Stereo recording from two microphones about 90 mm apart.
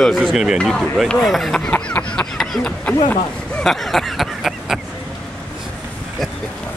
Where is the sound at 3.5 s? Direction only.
5° left (ahead or behind).